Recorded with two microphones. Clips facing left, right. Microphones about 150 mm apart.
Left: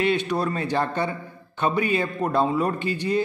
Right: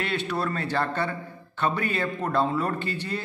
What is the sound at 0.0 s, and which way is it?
A man's voice, 15° left (ahead or behind).